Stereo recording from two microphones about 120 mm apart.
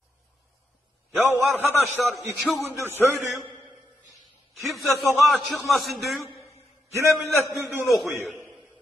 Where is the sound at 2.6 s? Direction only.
20° right (ahead or behind).